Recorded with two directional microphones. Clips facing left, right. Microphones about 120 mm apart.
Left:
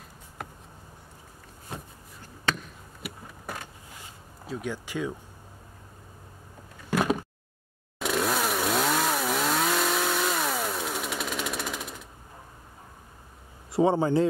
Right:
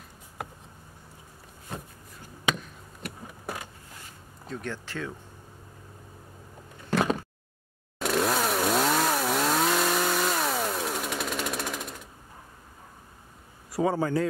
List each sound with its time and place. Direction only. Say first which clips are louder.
2.5 s a sound: right 1 dB; 10° right (ahead or behind)
3.0 s vehicle: even; 10° left (ahead or behind)
4.5 s speech: left 2 dB; 10° left (ahead or behind)
6.9 s a sound: even; 10° left (ahead or behind)
8.0 s chainsaw: right 1 dB; centre (ahead or behind)
13.7 s a man's voice: left 3 dB; 25° left (ahead or behind)